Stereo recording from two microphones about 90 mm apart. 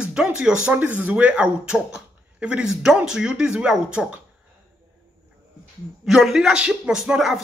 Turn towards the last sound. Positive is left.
turn(degrees=-5)  # may be behind; listen again after turning